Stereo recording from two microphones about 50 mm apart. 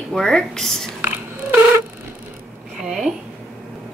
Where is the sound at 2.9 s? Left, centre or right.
Centre.